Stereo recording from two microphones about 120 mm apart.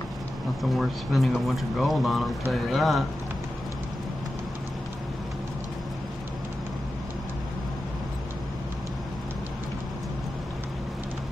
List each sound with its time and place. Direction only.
0.6 s speech: centre (ahead or behind)